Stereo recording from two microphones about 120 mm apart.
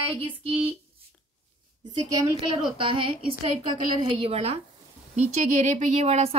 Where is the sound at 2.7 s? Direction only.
45° right (ahead or behind).